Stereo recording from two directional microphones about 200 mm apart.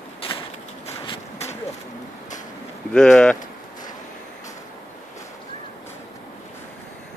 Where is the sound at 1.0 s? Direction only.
25° left (ahead or behind).